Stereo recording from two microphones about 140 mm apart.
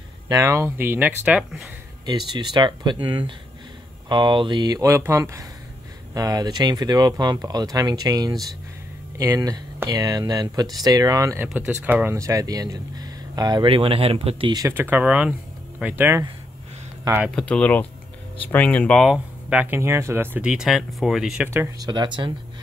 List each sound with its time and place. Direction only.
0.3 s speech: 20° right (ahead or behind)
2.0 s speech: 30° right (ahead or behind)
11.4 s speech: 10° right (ahead or behind); by 14.5 s 45° right (ahead or behind)
14.7 s speech: 15° right (ahead or behind)
17.4 s speech: 10° left (ahead or behind)
19.0 s speech: 10° right (ahead or behind)
21.5 s speech: 20° right (ahead or behind)